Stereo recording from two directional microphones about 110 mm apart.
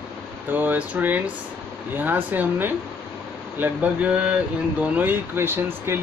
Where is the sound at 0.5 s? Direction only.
15° right (ahead or behind).